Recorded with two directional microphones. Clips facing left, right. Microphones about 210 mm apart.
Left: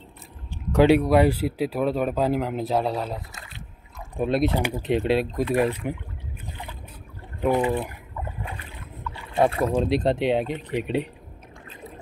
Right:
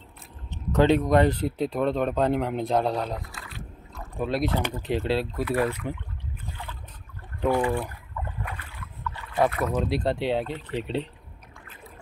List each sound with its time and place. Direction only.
0.5 s speech: 10° left (ahead or behind)
3.2 s rowboat: 20° left (ahead or behind)
4.2 s speech: 20° left (ahead or behind)
7.4 s speech: 20° left (ahead or behind)
8.5 s boat: 25° left (ahead or behind)
9.3 s speech: 30° left (ahead or behind)